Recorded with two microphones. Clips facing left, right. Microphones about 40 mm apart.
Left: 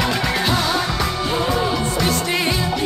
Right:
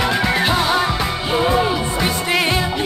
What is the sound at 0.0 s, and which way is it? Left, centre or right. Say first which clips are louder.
Music: right 3 dB; centre.